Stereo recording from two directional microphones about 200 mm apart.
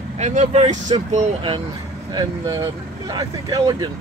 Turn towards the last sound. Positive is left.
turn(degrees=-20)  # may be behind; listen again after turning